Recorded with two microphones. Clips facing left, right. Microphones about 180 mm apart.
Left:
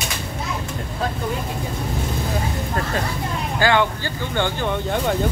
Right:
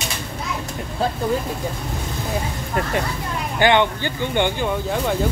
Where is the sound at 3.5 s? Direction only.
20° right (ahead or behind).